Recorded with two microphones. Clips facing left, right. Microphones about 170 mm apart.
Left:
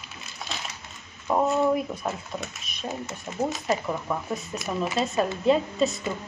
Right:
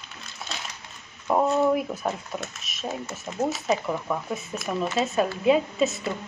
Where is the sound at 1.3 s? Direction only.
Centre (ahead or behind).